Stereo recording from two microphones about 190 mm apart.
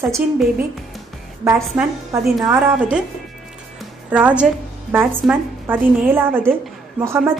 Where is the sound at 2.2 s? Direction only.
Centre (ahead or behind).